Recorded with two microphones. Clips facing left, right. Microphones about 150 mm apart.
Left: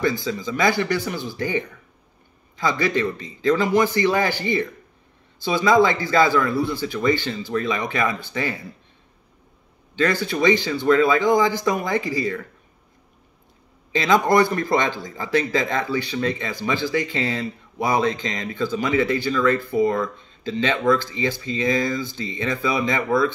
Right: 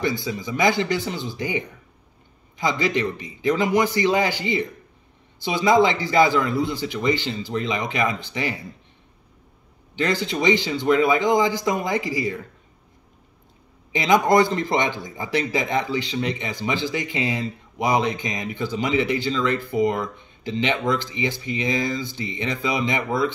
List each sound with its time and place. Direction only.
0.2 s a man's voice: 20° right (ahead or behind)
9.9 s speech: 20° right (ahead or behind)
13.9 s speech: 20° right (ahead or behind)